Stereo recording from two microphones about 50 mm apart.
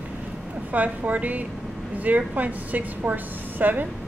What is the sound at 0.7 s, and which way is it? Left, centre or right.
A woman's voice, right.